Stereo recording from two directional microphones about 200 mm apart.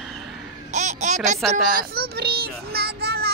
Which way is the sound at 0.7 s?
35° right (ahead or behind).